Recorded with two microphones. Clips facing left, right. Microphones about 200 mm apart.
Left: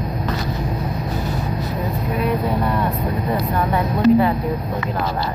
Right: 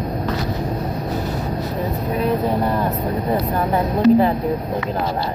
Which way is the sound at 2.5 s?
35° right (ahead or behind).